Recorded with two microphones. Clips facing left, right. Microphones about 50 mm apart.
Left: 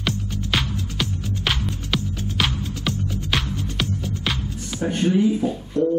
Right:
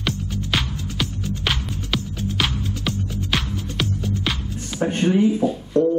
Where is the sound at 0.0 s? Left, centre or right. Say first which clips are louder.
Even; centre.